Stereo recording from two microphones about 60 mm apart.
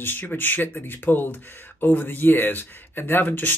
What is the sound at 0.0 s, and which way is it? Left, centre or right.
Speech, left.